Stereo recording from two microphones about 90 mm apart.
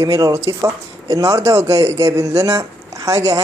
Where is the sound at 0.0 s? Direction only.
35° right (ahead or behind).